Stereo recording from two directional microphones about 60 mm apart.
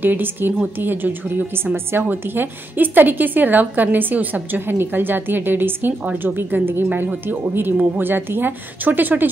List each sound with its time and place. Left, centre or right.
0.0 s a woman's voice: right